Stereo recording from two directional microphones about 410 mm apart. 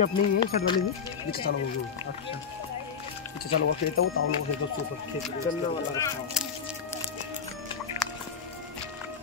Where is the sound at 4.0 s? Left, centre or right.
Left.